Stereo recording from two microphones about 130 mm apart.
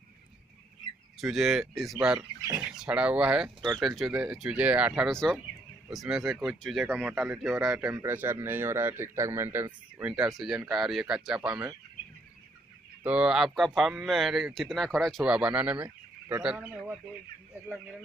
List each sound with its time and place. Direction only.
1.2 s speech: 5° right (ahead or behind)
2.1 s speech: 25° right (ahead or behind)
2.6 s a man's voice: 5° right (ahead or behind)
5.1 s speech: 5° left (ahead or behind)
7.9 s a man's voice: 20° right (ahead or behind)
13.0 s a man's voice: 10° right (ahead or behind)
17.6 s speech: centre (ahead or behind)